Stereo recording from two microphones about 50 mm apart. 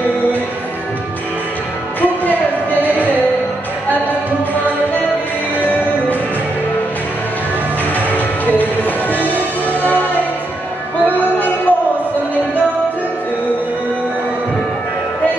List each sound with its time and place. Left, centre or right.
2.8 s music: left
5.6 s music: left
8.5 s music: left